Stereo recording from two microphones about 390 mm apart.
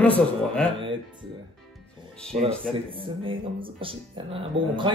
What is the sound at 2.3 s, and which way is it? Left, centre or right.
Speech, centre.